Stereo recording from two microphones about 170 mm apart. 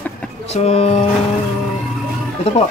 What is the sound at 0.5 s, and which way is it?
Speech, 40° left (ahead or behind).